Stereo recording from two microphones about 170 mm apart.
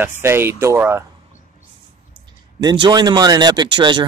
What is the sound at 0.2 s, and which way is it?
Speech, 15° right (ahead or behind).